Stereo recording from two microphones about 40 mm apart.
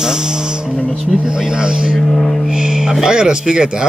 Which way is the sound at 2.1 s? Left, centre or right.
Centre.